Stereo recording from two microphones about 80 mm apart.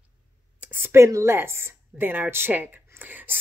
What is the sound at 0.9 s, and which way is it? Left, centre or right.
A woman's voice, right.